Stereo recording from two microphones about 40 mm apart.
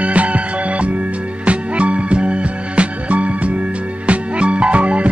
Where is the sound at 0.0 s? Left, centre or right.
Right.